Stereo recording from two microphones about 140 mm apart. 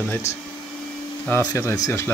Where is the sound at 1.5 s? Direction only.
20° left (ahead or behind).